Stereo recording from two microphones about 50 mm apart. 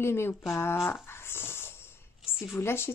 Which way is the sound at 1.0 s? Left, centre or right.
Left.